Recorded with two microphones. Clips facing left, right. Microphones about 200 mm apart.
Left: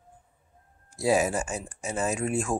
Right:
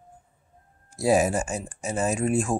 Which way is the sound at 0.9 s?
45° right (ahead or behind).